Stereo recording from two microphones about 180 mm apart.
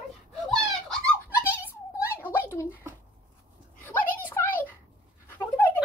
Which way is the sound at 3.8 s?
10° left (ahead or behind).